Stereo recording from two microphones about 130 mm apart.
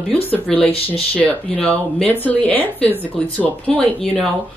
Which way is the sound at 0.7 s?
50° left (ahead or behind).